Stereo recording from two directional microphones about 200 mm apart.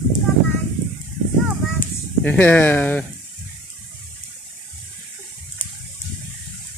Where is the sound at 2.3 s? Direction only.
10° left (ahead or behind).